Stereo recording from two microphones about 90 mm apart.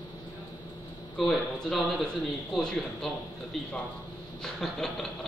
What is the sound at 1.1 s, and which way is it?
A man's voice, 5° left (ahead or behind).